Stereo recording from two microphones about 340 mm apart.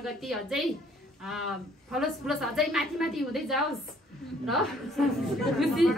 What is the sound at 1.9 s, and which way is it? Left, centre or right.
A woman's voice, centre.